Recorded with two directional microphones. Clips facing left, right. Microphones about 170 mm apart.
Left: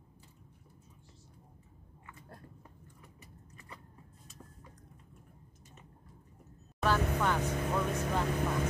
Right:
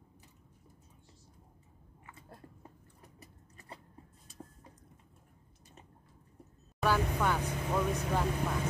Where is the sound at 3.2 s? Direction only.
35° right (ahead or behind).